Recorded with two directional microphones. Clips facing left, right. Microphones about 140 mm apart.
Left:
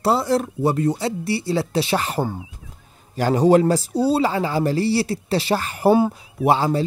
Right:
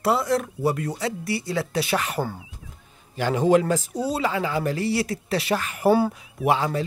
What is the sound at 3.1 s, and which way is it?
Speech, 40° left (ahead or behind).